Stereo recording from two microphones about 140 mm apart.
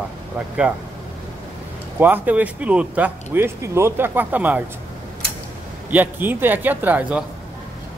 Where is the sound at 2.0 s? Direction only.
10° right (ahead or behind).